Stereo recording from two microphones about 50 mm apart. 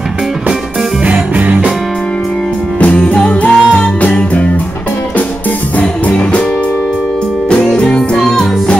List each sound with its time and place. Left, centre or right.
1.0 s music: right
2.8 s music: left
5.8 s music: left
7.4 s music: centre
8.2 s music: centre